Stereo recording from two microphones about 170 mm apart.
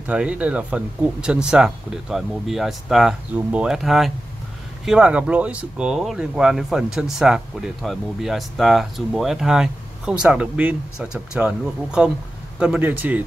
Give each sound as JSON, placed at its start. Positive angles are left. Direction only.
{"t": 0.0, "sound": "speech", "side_deg": -5}